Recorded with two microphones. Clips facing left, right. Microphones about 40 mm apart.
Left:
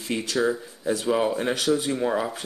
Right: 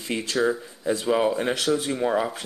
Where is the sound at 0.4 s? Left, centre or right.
Centre.